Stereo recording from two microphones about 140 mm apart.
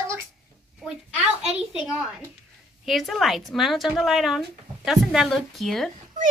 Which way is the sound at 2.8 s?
Centre (ahead or behind).